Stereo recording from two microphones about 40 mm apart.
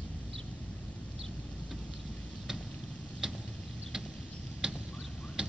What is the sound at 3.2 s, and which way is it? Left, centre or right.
Vehicle, centre.